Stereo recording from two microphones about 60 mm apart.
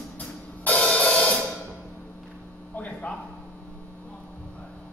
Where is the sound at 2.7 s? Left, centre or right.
Left.